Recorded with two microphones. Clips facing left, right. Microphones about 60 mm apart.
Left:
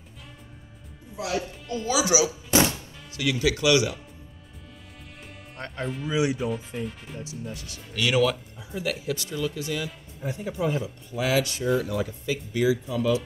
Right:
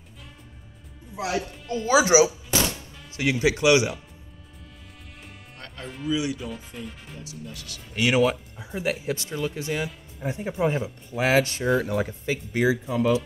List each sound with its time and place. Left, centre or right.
1.1 s speech: right
2.5 s music: left
3.2 s speech: right
6.0 s speech: left
6.5 s speech: centre
7.2 s speech: left
7.9 s speech: right